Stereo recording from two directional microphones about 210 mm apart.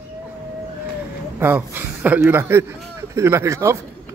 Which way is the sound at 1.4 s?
10° right (ahead or behind).